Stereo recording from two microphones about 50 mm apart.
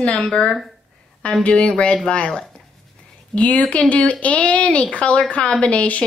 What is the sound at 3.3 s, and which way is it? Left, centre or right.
Speech, left.